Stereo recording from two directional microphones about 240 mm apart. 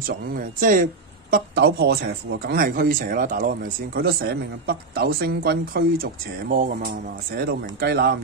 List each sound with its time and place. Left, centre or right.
0.6 s speech: right